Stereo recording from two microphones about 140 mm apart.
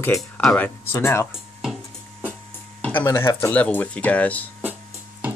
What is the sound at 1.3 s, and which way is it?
Dishes, centre (ahead or behind).